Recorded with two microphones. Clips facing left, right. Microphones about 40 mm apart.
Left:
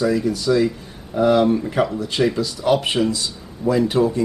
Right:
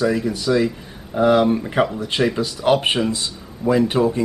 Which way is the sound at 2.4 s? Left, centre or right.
Right.